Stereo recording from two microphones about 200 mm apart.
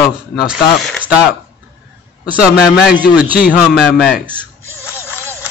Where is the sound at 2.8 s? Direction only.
5° right (ahead or behind).